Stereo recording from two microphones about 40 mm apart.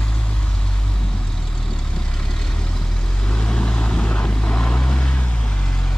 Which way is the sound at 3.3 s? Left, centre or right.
Centre.